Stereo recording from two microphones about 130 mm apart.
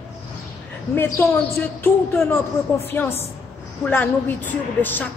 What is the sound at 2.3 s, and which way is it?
Speech, 15° left (ahead or behind).